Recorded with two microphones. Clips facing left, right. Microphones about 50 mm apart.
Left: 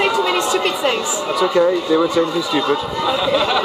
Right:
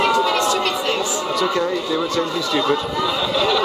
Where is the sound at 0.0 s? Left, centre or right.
Centre.